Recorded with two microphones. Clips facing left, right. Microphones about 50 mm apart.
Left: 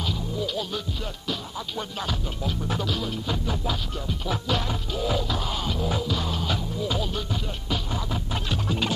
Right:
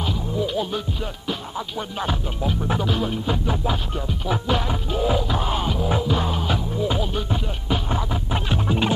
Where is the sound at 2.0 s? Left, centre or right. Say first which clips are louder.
Right 5 dB; right.